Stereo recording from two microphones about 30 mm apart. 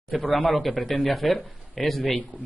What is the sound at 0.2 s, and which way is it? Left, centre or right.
Speech, left.